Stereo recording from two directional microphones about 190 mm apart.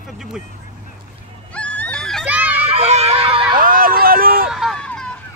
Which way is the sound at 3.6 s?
50° right (ahead or behind).